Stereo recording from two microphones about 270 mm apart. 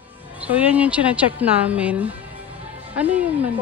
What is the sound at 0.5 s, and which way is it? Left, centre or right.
A woman's voice, centre.